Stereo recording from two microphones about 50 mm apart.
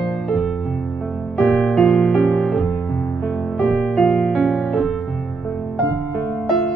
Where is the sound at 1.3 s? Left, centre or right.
Left.